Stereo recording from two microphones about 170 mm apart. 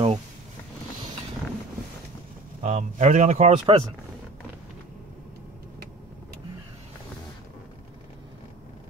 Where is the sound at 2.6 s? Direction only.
45° right (ahead or behind).